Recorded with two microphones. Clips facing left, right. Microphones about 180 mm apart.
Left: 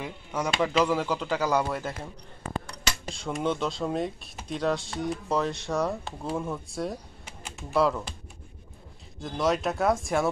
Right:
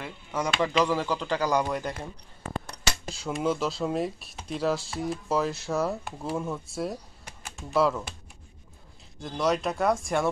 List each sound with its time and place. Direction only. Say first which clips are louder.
0.0 s speech: even; 10° left (ahead or behind)
3.1 s speech: right 1 dB; centre (ahead or behind)
9.2 s speech: even; centre (ahead or behind)